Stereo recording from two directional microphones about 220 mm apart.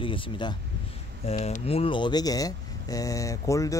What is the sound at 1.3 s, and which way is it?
Speech, 35° left (ahead or behind).